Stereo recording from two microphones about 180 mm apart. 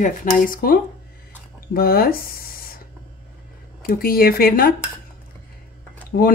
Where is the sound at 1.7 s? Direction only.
55° left (ahead or behind).